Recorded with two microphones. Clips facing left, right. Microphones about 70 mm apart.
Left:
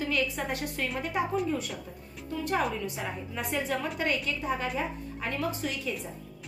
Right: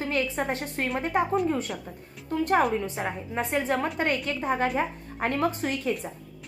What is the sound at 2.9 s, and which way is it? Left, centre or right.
A woman's voice, right.